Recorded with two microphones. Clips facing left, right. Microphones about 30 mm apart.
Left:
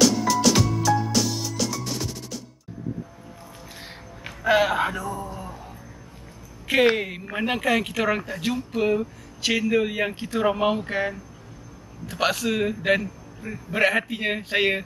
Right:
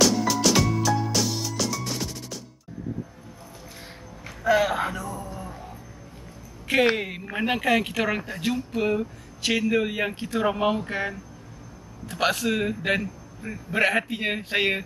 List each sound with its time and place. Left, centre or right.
0.0 s music: centre
4.5 s speech: left
5.2 s music: centre
6.7 s speech: centre